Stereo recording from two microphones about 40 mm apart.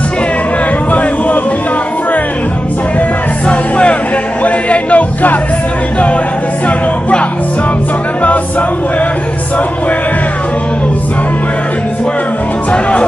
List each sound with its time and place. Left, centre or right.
3.4 s music: left
4.4 s music: left
8.2 s music: left